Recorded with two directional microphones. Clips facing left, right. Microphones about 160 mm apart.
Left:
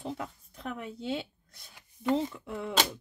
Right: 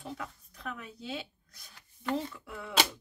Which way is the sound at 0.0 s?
25° left (ahead or behind).